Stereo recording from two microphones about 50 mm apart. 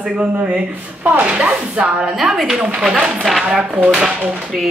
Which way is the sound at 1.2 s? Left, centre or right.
Right.